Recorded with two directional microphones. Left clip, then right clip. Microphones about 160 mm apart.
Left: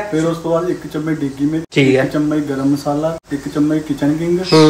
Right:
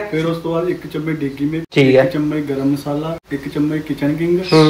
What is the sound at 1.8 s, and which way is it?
Speech, 5° left (ahead or behind).